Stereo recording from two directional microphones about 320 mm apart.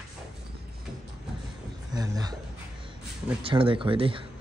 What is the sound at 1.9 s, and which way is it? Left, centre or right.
Speech, centre.